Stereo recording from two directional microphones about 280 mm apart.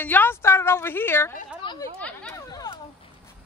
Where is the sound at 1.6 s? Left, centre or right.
Centre.